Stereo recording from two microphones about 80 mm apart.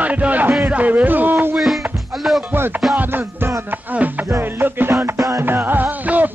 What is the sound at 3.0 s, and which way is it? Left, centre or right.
Music, right.